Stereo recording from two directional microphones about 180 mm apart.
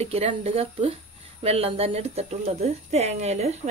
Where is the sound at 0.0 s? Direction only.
35° right (ahead or behind).